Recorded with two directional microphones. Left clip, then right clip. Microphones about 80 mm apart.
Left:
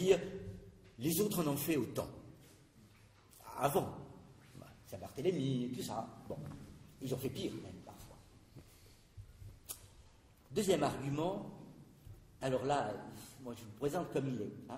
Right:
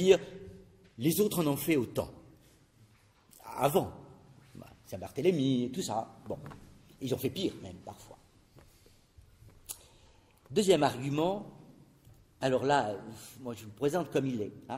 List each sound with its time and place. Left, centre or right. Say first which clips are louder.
0.9 s a man's voice: right 6 dB; right
3.4 s a man's voice: right 6 dB; right
10.5 s speech: right 7 dB; right
12.4 s a man's voice: right 7 dB; right